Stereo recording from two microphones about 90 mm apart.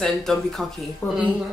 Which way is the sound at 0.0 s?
5° left (ahead or behind).